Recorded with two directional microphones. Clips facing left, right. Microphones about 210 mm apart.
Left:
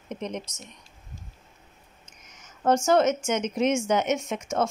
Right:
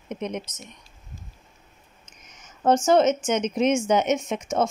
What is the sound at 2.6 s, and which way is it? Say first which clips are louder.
A woman's voice: right 2 dB; 20° right (ahead or behind).